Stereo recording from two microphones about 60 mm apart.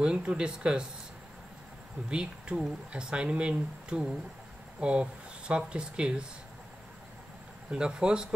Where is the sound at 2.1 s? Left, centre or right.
Centre.